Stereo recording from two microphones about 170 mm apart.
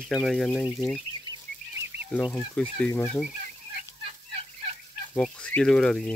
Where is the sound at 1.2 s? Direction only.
25° right (ahead or behind).